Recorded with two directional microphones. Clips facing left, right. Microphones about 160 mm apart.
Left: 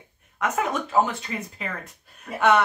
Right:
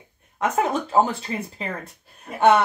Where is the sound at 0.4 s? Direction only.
30° right (ahead or behind).